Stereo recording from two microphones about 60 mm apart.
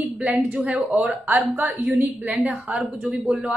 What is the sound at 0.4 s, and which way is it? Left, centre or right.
Speech, right.